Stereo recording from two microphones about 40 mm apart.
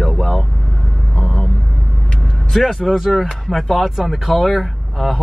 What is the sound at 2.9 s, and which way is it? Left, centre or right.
Speech, centre.